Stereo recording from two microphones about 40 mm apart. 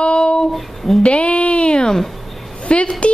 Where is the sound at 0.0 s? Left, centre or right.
Left.